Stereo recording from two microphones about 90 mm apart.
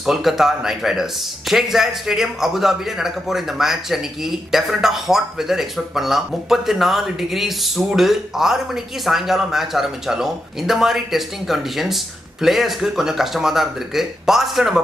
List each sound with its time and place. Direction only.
0.0 s a man's voice: 5° right (ahead or behind)